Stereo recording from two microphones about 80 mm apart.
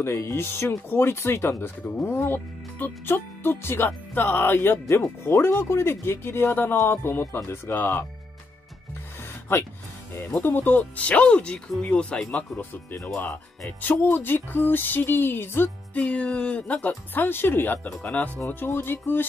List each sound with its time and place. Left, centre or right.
0.0 s speech: left
10.3 s speech: left